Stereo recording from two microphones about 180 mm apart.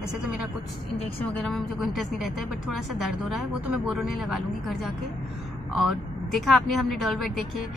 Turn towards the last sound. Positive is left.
turn(degrees=0)  # may be behind; listen again after turning